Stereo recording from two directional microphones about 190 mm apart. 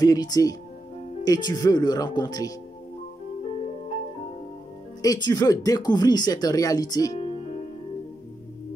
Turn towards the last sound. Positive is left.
turn(degrees=20)  # may be behind; listen again after turning